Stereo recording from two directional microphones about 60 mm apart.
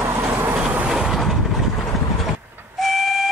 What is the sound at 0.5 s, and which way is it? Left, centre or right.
Train, right.